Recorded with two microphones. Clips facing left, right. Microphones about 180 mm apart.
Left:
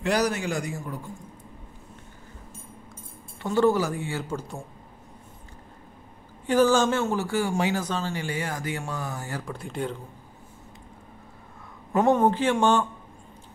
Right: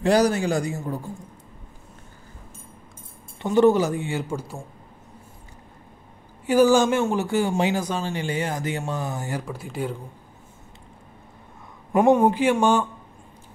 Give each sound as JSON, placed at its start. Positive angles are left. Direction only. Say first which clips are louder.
{"t": 0.0, "sound": "a man's voice", "louder": "right 6 dB", "side_deg": -30}
{"t": 3.4, "sound": "speech", "louder": "right 4 dB", "side_deg": -20}
{"t": 6.4, "sound": "speech", "louder": "right 3 dB", "side_deg": -10}
{"t": 9.4, "sound": "speech", "louder": "right 2 dB", "side_deg": -5}
{"t": 11.9, "sound": "speech", "louder": "right 3 dB", "side_deg": -15}